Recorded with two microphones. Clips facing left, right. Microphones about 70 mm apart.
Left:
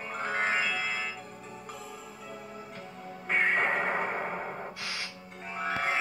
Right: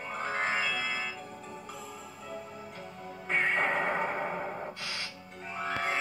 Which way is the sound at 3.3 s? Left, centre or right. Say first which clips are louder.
Left 1 dB; centre.